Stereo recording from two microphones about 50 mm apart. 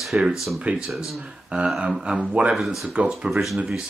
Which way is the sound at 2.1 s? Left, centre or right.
Right.